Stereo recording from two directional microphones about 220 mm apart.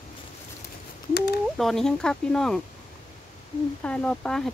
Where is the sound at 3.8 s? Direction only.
5° left (ahead or behind).